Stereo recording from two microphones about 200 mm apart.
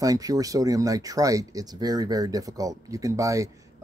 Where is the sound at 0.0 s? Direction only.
15° right (ahead or behind).